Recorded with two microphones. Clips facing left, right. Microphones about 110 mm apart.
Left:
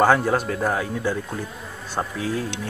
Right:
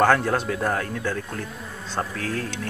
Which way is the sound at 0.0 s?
5° left (ahead or behind).